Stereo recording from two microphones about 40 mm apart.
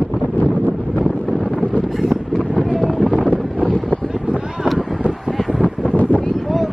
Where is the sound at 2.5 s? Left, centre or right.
Centre.